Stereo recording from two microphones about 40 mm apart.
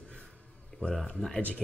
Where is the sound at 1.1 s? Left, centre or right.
Centre.